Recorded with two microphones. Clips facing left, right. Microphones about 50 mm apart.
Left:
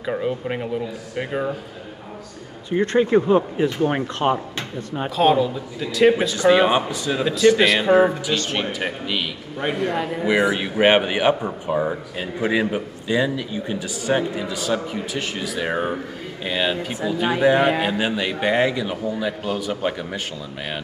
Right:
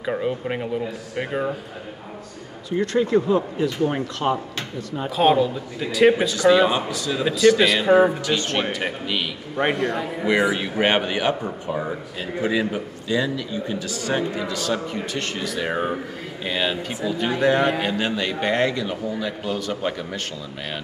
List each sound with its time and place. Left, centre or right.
0.0 s speech: centre
2.7 s speech: left
5.1 s speech: centre
6.3 s speech: left
7.6 s speech: centre
8.3 s a man's voice: centre